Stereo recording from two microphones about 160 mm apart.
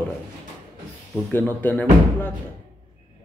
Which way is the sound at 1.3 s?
15° left (ahead or behind).